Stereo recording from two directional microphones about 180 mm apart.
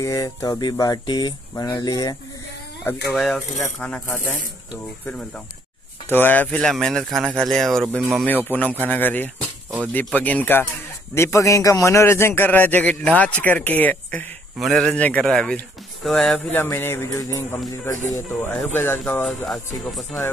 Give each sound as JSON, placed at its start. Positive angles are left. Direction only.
{"t": 0.0, "sound": "speech", "side_deg": 20}
{"t": 3.2, "sound": "a man's voice", "side_deg": 0}
{"t": 6.0, "sound": "a man's voice", "side_deg": 10}
{"t": 19.2, "sound": "speech", "side_deg": 5}